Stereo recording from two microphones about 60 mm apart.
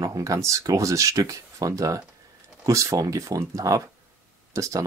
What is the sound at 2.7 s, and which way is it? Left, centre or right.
Speech, right.